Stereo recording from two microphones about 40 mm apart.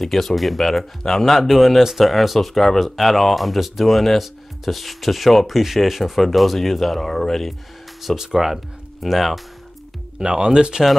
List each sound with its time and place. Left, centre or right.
0.0 s speech: centre
8.2 s speech: centre
10.1 s speech: right